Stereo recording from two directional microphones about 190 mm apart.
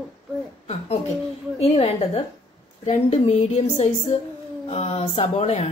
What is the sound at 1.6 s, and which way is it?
Speech, 30° left (ahead or behind).